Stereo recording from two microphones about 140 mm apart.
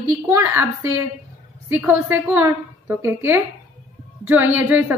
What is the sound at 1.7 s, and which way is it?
A woman's voice, 15° right (ahead or behind).